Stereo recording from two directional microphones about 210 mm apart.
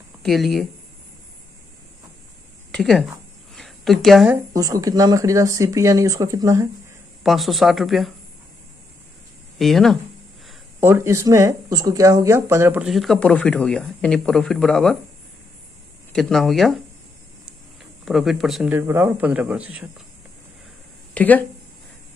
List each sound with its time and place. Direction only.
0.2 s speech: centre (ahead or behind)
2.7 s speech: centre (ahead or behind)
3.5 s a sound: centre (ahead or behind)
4.6 s speech: 15° right (ahead or behind)
7.2 s speech: centre (ahead or behind)
9.6 s speech: centre (ahead or behind)
10.8 s speech: 10° right (ahead or behind)
16.1 s speech: centre (ahead or behind)
18.0 s speech: centre (ahead or behind)
21.1 s speech: 5° left (ahead or behind)